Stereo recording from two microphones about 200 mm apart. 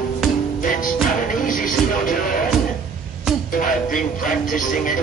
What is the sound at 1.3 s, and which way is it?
Music, 45° left (ahead or behind).